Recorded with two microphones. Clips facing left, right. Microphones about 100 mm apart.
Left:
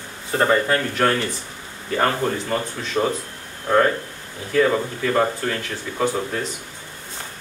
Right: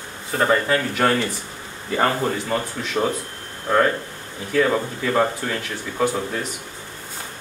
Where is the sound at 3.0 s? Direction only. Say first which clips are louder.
Left 1 dB; 5° right (ahead or behind).